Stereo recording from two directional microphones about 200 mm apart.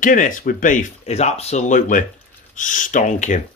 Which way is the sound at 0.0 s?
40° left (ahead or behind).